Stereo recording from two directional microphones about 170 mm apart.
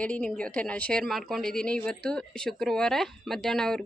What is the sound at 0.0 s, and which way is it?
A woman's voice, 5° left (ahead or behind).